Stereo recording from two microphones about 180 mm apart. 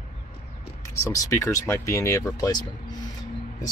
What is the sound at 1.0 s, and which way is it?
Speech, 20° left (ahead or behind).